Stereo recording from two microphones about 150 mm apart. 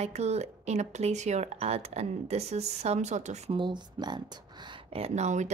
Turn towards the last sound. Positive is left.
turn(degrees=-50)  # may be behind; listen again after turning